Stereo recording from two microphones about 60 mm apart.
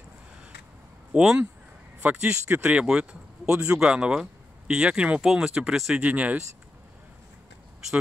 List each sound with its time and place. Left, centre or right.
1.1 s speech: centre
2.0 s speech: right; by 5.9 s centre
5.9 s speech: right